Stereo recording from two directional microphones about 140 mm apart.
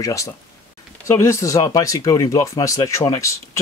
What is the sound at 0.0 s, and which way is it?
Speech, 20° left (ahead or behind).